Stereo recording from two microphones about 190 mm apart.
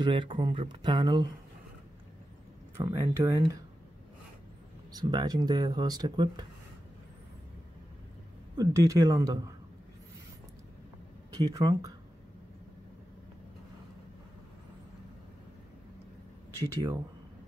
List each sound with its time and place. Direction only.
0.0 s speech: 25° right (ahead or behind)
2.8 s speech: 15° right (ahead or behind)
4.9 s speech: 20° right (ahead or behind)
8.5 s speech: 15° right (ahead or behind)
11.5 s speech: 15° right (ahead or behind)
16.6 s speech: 15° right (ahead or behind)